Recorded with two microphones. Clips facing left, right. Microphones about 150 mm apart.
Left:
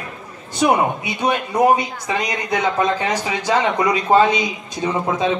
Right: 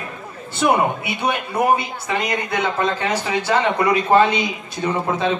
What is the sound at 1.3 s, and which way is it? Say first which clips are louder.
A man's voice: left 3 dB; 15° left (ahead or behind).